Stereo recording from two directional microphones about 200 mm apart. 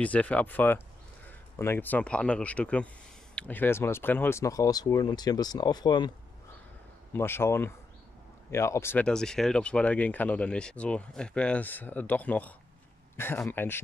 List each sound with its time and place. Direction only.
0.0 s speech: 5° left (ahead or behind)
7.2 s speech: 10° left (ahead or behind)